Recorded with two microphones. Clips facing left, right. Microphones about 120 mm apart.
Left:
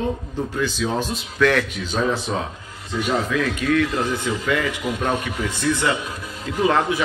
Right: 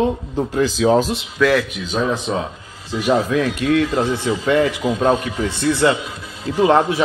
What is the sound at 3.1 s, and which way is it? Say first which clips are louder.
A man's voice: right 6 dB; 40° right (ahead or behind).